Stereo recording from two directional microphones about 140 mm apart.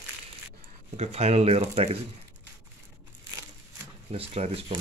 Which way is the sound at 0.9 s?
50° right (ahead or behind).